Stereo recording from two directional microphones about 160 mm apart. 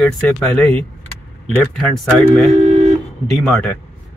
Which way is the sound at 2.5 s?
45° right (ahead or behind).